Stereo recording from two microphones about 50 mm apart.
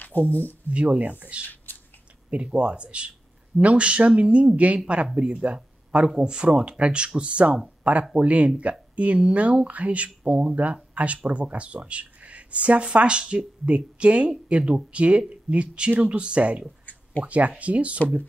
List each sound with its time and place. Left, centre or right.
0.0 s speech: left
0.7 s speech: right